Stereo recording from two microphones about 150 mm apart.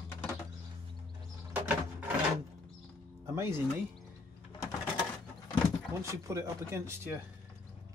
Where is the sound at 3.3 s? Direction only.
20° right (ahead or behind).